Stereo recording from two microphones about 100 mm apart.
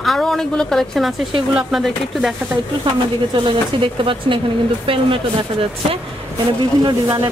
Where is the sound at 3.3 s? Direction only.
60° right (ahead or behind).